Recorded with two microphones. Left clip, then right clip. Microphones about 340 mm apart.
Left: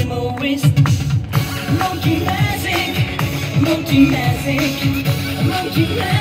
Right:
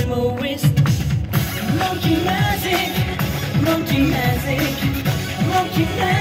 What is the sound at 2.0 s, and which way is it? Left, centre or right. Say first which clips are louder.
Music: even; centre.